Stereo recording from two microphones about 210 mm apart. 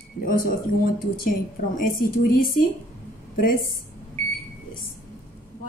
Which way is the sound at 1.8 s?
40° left (ahead or behind).